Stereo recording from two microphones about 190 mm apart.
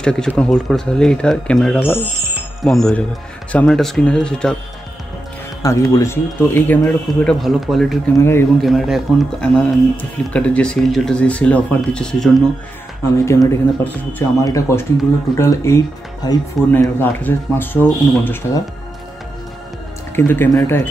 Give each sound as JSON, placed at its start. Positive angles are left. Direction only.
{"t": 0.0, "sound": "speech", "side_deg": 5}
{"t": 2.3, "sound": "music", "side_deg": 0}
{"t": 3.5, "sound": "speech", "side_deg": 0}
{"t": 5.6, "sound": "speech", "side_deg": 15}
{"t": 8.2, "sound": "speech", "side_deg": 10}
{"t": 8.5, "sound": "speech", "side_deg": 0}
{"t": 13.2, "sound": "speech", "side_deg": 15}
{"t": 20.2, "sound": "speech", "side_deg": 10}